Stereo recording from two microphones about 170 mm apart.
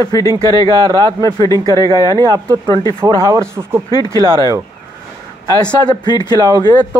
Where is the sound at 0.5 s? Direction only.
25° right (ahead or behind).